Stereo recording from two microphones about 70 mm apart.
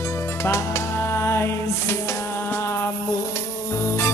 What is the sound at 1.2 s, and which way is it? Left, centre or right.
Music, left.